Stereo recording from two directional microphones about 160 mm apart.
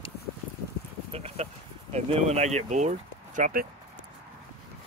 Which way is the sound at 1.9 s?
45° right (ahead or behind).